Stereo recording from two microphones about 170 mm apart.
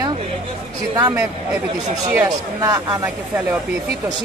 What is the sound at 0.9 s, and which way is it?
Speech, 20° right (ahead or behind).